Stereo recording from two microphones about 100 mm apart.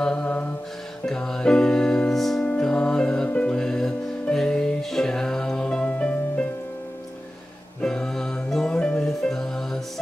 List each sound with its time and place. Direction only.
0.0 s mantra: 10° left (ahead or behind)
1.0 s music: 5° left (ahead or behind)
7.8 s music: 5° left (ahead or behind)